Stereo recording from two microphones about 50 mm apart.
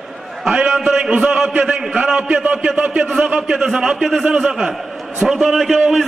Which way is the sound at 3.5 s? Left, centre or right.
Centre.